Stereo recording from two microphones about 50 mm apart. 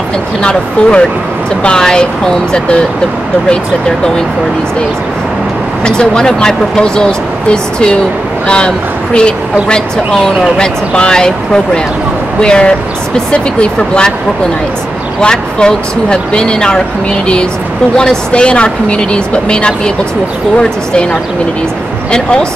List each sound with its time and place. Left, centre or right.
0.4 s speech: centre
5.9 s speech: centre
15.1 s speech: centre
17.9 s speech: centre